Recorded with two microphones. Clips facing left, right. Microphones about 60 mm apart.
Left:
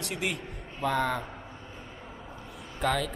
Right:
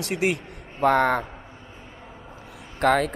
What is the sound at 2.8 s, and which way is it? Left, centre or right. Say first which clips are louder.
Speech: right 8 dB; right.